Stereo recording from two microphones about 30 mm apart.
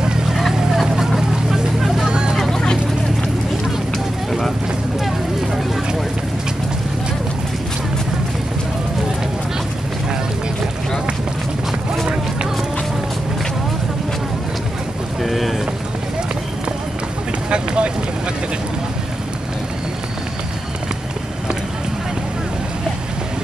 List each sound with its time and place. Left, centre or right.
0.3 s vehicle: centre
1.3 s vehicle: centre
1.8 s vehicle: centre
2.0 s vehicle: right
2.5 s vehicle: centre
15.2 s boat: centre
17.5 s vehicle: right